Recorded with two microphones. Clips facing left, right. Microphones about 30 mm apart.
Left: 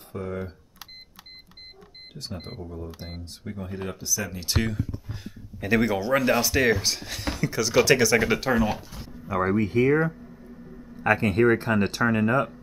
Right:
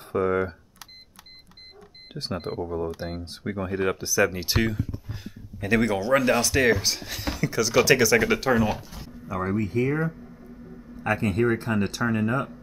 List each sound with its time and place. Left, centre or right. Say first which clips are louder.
0.1 s speech: right 9 dB; right
2.1 s speech: right 7 dB; right
2.6 s speech: right 9 dB; right
3.0 s speech: right 6 dB; right
3.6 s speech: right 8 dB; right
4.6 s speech: right 1 dB; centre
9.3 s speech: left 3 dB; centre
10.2 s a sound: even; centre
11.1 s speech: left 3 dB; centre